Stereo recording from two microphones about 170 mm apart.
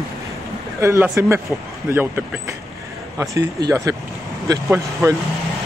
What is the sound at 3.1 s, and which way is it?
Speech, 20° right (ahead or behind).